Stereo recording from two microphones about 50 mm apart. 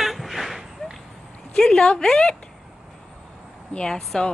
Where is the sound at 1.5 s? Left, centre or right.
Centre.